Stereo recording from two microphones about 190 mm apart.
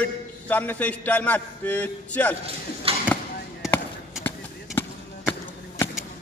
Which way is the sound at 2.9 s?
30° right (ahead or behind).